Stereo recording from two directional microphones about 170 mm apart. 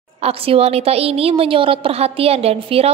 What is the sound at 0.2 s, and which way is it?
A woman's voice, 35° right (ahead or behind).